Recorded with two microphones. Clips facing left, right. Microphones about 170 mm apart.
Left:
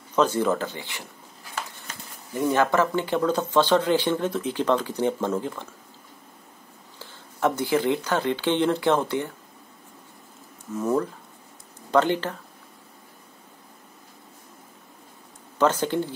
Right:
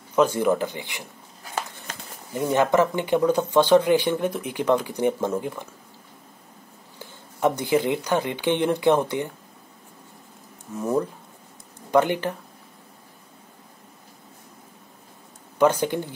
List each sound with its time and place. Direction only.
0.1 s speech: 10° right (ahead or behind)
2.3 s speech: 20° right (ahead or behind)
7.0 s speech: 15° right (ahead or behind)
10.8 s speech: 10° right (ahead or behind)
15.6 s speech: 15° right (ahead or behind)